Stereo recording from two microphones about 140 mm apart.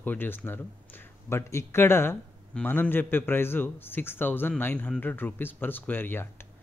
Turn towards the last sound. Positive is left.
turn(degrees=15)  # may be behind; listen again after turning